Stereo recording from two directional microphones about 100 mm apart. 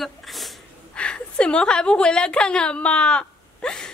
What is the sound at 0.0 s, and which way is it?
Sneeze, centre (ahead or behind).